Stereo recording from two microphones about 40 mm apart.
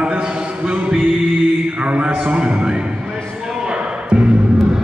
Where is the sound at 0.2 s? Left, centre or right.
Right.